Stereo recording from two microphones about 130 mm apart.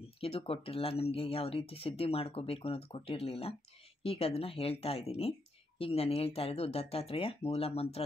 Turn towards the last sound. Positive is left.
turn(degrees=50)  # may be behind; listen again after turning